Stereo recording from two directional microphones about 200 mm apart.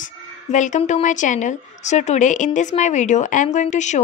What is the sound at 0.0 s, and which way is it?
A woman's voice, 40° left (ahead or behind).